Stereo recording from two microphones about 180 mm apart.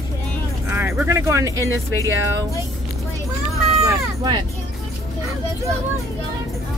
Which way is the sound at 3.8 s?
20° right (ahead or behind).